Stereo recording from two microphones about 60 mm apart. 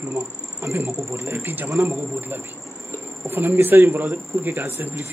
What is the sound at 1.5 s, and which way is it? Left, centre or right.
A man's voice, right.